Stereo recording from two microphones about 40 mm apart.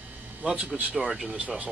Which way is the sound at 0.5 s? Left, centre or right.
Right.